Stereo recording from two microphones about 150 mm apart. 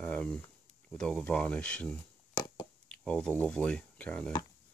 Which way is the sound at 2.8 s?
5° left (ahead or behind).